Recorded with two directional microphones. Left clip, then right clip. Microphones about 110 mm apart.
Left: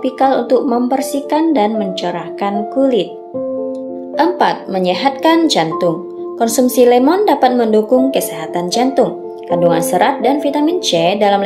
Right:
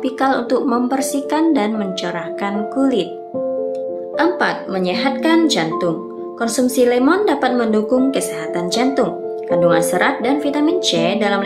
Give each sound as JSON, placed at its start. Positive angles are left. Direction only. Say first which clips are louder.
{"t": 0.0, "sound": "speech", "louder": "left 4 dB", "side_deg": 20}
{"t": 4.2, "sound": "speech", "louder": "left 4 dB", "side_deg": 35}